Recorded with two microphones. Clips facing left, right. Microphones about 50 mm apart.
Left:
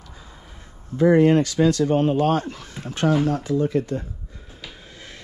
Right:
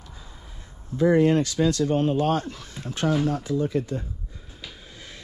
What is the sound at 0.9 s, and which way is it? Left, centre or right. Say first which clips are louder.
Speech: left 3 dB; left.